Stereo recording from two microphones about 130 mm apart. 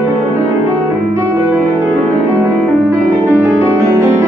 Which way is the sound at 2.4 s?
15° right (ahead or behind).